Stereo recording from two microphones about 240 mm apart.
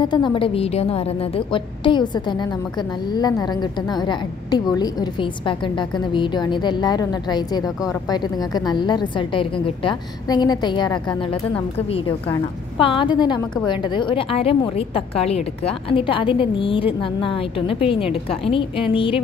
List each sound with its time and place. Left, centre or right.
0.0 s a woman's voice: centre